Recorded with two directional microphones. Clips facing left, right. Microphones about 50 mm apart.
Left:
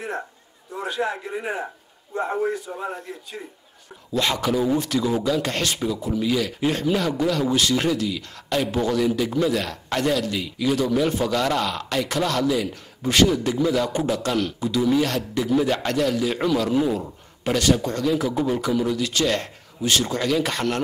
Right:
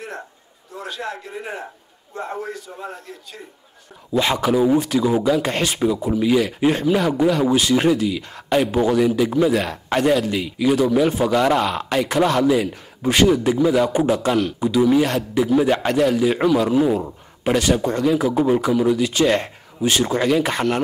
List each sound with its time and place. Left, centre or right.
0.8 s a man's voice: centre
2.7 s a man's voice: centre
4.1 s speech: centre